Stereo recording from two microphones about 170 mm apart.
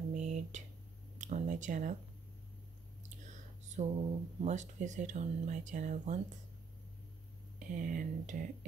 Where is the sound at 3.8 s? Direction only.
40° right (ahead or behind).